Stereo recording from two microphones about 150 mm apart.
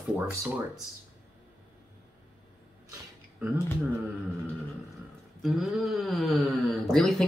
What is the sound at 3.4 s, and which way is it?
Speech, 10° right (ahead or behind).